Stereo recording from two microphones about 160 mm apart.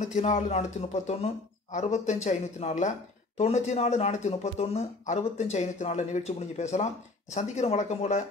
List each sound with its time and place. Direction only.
0.0 s speech: 50° left (ahead or behind)